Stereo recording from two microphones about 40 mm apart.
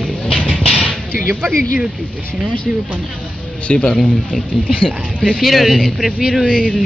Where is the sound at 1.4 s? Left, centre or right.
Centre.